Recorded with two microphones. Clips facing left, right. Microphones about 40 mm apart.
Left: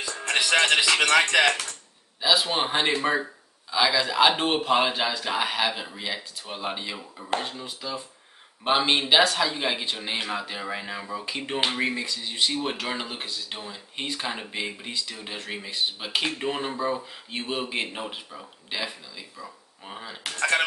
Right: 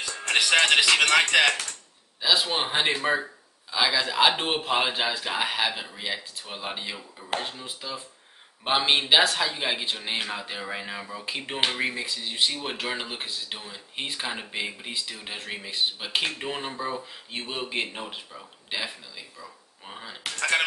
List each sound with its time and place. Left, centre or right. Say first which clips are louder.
0.5 s speech: right 1 dB; centre
14.9 s speech: left 1 dB; centre